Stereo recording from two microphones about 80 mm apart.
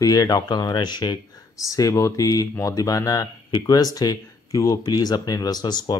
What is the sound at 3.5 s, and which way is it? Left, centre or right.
Speech, left.